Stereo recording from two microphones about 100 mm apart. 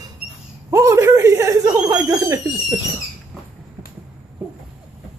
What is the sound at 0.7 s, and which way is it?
Chuckle, 30° right (ahead or behind).